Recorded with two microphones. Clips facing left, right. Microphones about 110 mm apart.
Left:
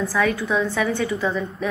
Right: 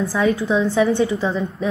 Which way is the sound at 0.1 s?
25° right (ahead or behind).